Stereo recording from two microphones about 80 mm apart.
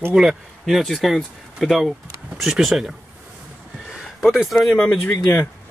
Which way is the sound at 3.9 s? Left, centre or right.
Centre.